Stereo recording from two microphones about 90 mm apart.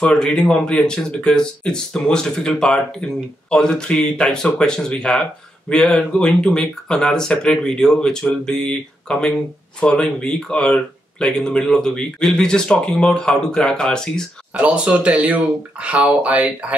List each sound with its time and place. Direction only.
0.0 s speech: 10° left (ahead or behind)
14.6 s speech: 15° right (ahead or behind)